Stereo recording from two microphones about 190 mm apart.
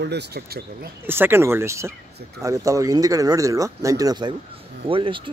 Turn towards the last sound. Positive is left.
turn(degrees=-25)  # may be behind; listen again after turning